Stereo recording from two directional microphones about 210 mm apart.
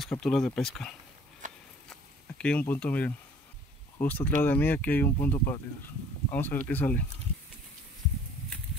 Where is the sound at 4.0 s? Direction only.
10° left (ahead or behind).